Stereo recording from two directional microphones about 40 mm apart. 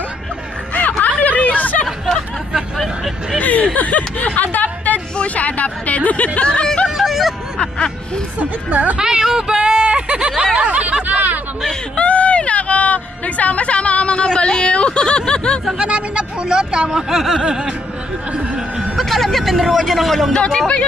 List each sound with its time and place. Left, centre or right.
1.0 s a sound: left
3.3 s speech: left
4.4 s a sound: left
5.1 s speech: left
7.0 s vehicle: centre
8.4 s speech: right
8.9 s a sound: centre
10.7 s snicker: right
12.0 s speech: left
15.8 s speech: right
17.1 s snicker: centre
17.4 s speech: right
18.9 s speech: centre
20.3 s speech: centre